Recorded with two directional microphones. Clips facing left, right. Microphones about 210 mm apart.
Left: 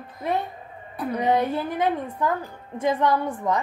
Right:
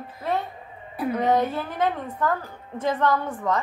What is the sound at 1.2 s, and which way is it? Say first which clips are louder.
A woman's voice: left 1 dB; 15° left (ahead or behind).